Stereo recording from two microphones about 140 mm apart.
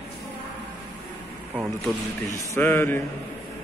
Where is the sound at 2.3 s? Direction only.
20° left (ahead or behind).